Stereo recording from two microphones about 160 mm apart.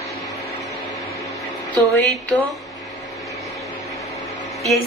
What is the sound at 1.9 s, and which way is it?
Speech, 10° left (ahead or behind).